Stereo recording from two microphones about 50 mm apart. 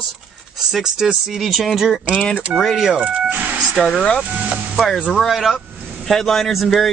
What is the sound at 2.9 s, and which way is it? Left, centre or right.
Speech, right.